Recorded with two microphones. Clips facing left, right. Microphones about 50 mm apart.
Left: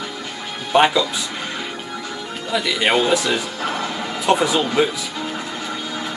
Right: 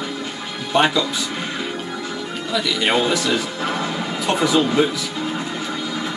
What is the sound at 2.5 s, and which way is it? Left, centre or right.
Speech, left.